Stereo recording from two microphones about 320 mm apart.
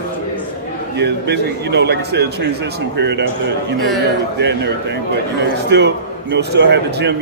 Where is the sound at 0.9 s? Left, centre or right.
Right.